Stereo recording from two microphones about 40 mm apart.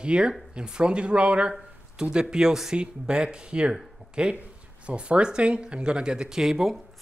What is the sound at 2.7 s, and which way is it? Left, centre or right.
Speech, right.